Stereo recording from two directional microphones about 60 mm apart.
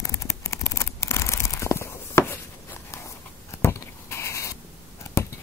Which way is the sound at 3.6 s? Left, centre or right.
Left.